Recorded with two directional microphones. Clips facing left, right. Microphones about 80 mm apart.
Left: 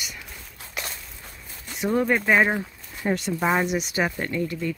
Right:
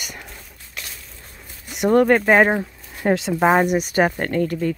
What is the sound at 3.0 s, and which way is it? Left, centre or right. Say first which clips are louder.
Speech: right 6 dB; right.